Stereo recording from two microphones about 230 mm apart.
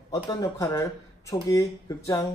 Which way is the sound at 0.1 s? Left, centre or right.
Centre.